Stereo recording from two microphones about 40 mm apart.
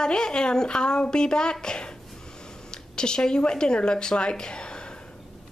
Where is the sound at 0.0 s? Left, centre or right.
Centre.